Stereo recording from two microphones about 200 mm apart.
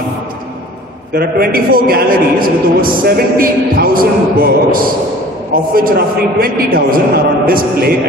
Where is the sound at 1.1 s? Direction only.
50° right (ahead or behind).